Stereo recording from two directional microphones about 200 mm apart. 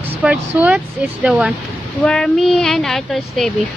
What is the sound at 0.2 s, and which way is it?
Speech, 5° right (ahead or behind).